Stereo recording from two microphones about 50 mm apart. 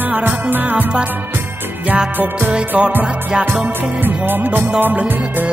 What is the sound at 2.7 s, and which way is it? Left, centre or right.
Music, right.